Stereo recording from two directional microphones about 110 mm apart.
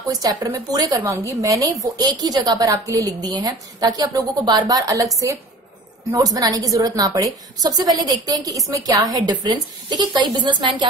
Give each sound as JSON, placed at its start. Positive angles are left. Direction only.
{"t": 0.1, "sound": "speech", "side_deg": -35}
{"t": 6.1, "sound": "speech", "side_deg": -35}